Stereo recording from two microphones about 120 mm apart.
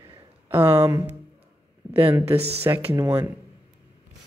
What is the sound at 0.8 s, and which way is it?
Speech, 25° right (ahead or behind).